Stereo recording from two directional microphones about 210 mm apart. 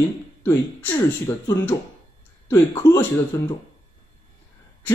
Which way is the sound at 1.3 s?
15° left (ahead or behind).